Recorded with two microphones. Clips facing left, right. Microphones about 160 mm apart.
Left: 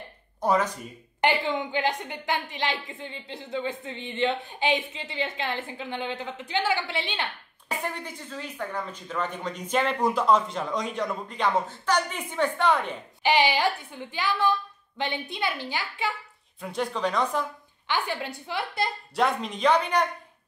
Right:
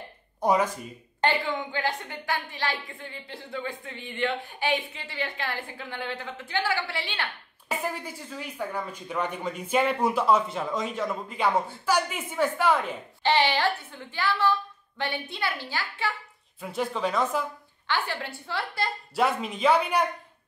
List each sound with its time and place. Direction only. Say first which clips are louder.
0.4 s speech: right 1 dB; 15° right (ahead or behind)
1.2 s a woman's voice: left 2 dB; 20° left (ahead or behind)
7.6 s speech: right 1 dB; 5° right (ahead or behind)
13.2 s a woman's voice: left 1 dB; 15° left (ahead or behind)
16.6 s speech: even; centre (ahead or behind)
17.8 s a woman's voice: left 1 dB; 15° left (ahead or behind)
19.1 s speech: even; 5° right (ahead or behind)